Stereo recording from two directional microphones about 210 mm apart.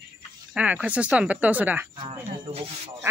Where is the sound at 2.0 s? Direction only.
25° right (ahead or behind).